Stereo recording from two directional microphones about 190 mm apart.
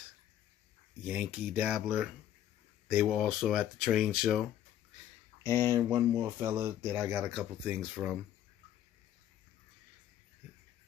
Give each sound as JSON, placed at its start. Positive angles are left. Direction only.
{"t": 1.0, "sound": "speech", "side_deg": -5}
{"t": 5.6, "sound": "speech", "side_deg": -15}